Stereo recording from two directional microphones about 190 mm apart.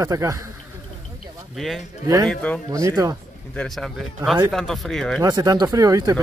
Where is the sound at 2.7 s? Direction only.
15° right (ahead or behind).